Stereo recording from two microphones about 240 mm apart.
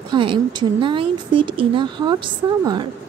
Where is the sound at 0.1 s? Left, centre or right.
Centre.